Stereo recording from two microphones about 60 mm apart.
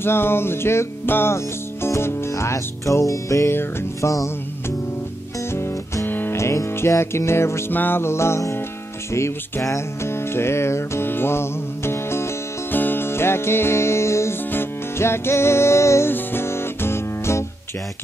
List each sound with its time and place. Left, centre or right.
0.0 s music: left
1.3 s speech: left
3.4 s music: left
6.0 s music: left
6.3 s music: left
7.7 s music: left
8.0 s music: left
12.7 s music: left